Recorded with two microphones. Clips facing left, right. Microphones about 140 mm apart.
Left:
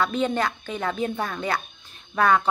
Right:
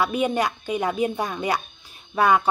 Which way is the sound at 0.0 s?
10° right (ahead or behind).